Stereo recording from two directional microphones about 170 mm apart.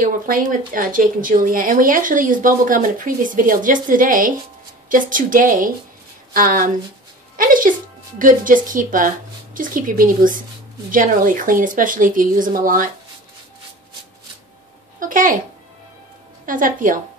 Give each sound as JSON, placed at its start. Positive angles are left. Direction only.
{"t": 0.0, "sound": "speech", "side_deg": -55}
{"t": 15.0, "sound": "a sound", "side_deg": -55}
{"t": 16.4, "sound": "speech", "side_deg": -50}